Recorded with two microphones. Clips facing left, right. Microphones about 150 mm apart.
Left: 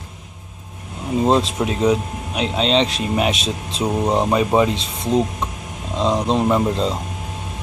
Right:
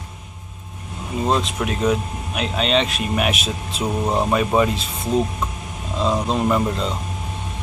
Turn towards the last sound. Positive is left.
turn(degrees=25)  # may be behind; listen again after turning